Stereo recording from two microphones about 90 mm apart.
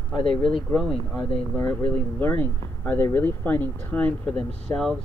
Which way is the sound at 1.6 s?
25° left (ahead or behind).